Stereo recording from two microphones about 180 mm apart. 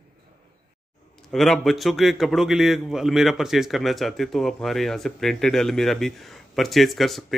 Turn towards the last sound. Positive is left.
turn(degrees=0)  # may be behind; listen again after turning